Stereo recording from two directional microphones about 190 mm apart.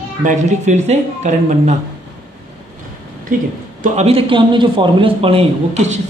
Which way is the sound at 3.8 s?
35° right (ahead or behind).